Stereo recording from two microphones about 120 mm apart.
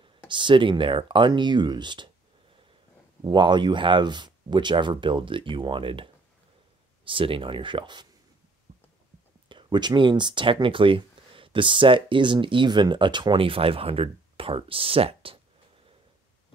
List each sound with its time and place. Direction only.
0.3 s speech: 40° right (ahead or behind)
3.3 s speech: 40° right (ahead or behind)
7.1 s speech: 45° right (ahead or behind)
8.7 s heart sounds: 70° right (ahead or behind)
9.5 s speech: 40° right (ahead or behind)